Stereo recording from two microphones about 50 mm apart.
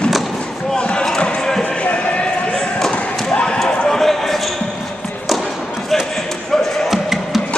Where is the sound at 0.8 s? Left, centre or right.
Left.